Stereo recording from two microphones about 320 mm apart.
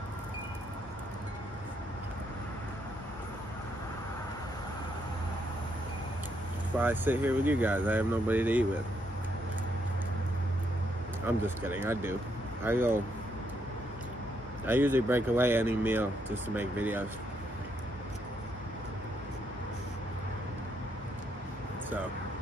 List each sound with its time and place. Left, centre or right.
6.8 s speech: centre
11.2 s speech: centre
14.7 s speech: centre